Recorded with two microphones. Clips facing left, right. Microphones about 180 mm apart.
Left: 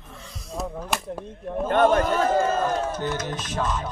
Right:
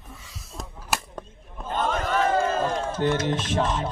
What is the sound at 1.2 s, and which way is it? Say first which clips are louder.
Speech: left 11 dB; 65° left (ahead or behind).